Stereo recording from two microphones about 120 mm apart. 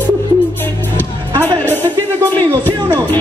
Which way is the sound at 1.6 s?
15° left (ahead or behind).